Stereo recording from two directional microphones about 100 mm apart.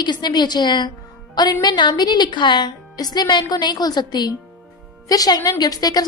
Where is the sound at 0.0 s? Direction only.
45° left (ahead or behind).